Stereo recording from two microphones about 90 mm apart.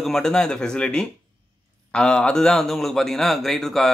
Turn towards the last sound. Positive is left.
turn(degrees=5)  # may be behind; listen again after turning